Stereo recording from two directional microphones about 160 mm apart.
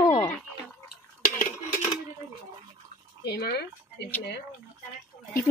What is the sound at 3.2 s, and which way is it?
Speech, 80° left.